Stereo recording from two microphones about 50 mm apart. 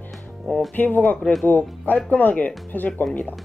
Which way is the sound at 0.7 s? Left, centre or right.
Left.